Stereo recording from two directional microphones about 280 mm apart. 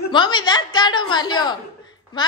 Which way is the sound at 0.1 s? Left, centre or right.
Centre.